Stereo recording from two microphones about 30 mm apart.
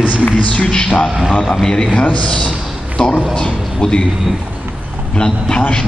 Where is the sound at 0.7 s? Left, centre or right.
Left.